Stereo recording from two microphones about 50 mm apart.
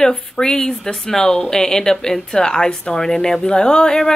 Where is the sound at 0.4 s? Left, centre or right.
Centre.